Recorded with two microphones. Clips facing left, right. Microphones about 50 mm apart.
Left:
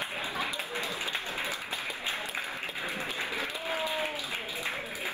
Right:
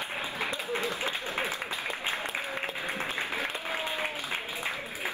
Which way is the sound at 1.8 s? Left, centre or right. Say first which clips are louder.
Right 2 dB; right.